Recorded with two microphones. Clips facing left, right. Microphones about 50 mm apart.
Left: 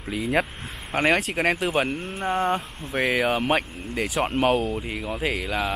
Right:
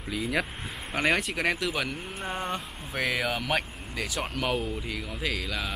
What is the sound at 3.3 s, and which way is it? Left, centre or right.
Speech, left.